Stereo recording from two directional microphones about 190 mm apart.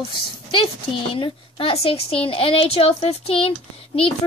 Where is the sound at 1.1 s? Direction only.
25° left (ahead or behind).